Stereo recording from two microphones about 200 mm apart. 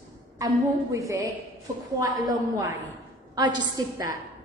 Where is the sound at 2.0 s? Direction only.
15° right (ahead or behind).